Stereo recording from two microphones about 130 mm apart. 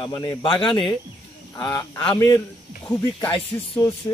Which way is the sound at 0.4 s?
40° left (ahead or behind).